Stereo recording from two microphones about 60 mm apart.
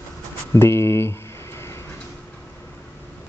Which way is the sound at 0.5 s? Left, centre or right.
Left.